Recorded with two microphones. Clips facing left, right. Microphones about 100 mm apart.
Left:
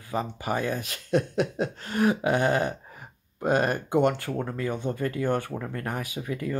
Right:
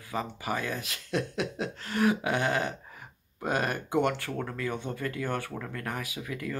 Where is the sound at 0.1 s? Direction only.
30° left (ahead or behind).